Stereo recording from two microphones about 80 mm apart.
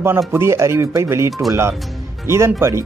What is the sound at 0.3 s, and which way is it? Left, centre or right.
Speech, right.